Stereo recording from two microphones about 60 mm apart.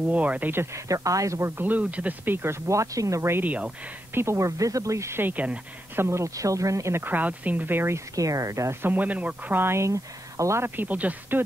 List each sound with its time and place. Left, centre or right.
0.0 s speech: right
0.7 s speech: right
1.6 s speech: right
3.2 s speech: right
3.4 s speech: right
4.1 s speech: right
5.2 s speech: right
5.9 s speech: right
6.9 s speech: right
8.2 s speech: right
8.8 s speech: right
9.6 s speech: right
9.8 s speech: right
10.6 s speech: right